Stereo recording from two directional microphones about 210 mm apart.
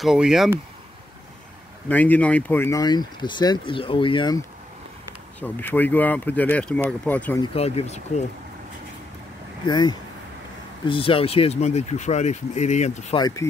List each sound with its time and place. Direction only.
0.0 s speech: centre (ahead or behind)
1.9 s speech: 10° left (ahead or behind)
5.4 s speech: 10° left (ahead or behind)
7.5 s speech: 30° left (ahead or behind)
9.7 s speech: 20° left (ahead or behind)
13.2 s speech: 15° left (ahead or behind)